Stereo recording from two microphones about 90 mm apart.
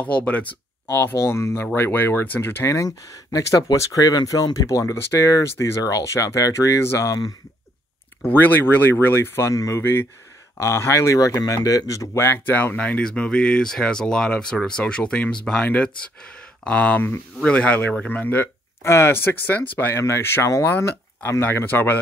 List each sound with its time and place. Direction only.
0.0 s speech: 15° left (ahead or behind)
0.8 s speech: 25° left (ahead or behind)
8.2 s speech: 20° left (ahead or behind); by 12.3 s 35° left (ahead or behind)
12.3 s speech: 25° left (ahead or behind)